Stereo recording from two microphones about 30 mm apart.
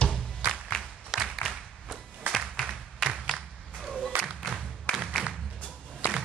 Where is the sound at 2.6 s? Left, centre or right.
Left.